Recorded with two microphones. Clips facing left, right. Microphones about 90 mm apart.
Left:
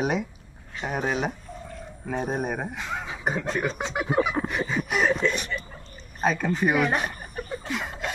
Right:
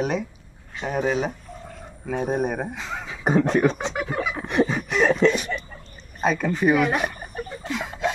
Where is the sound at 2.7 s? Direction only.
5° left (ahead or behind).